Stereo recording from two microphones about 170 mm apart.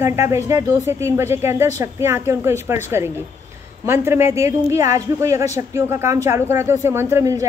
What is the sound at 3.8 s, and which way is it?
A woman's voice, 15° right (ahead or behind).